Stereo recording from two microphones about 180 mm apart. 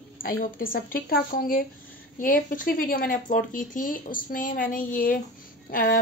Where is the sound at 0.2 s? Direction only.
50° left (ahead or behind).